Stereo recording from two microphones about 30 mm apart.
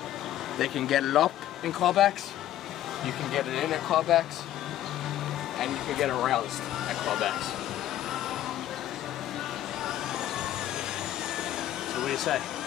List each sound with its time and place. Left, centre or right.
0.6 s speech: centre
3.3 s speech: centre
5.9 s speech: centre
6.9 s vehicle: centre
11.9 s a sound: centre